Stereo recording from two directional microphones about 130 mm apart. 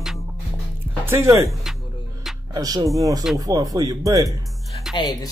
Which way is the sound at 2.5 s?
30° right (ahead or behind).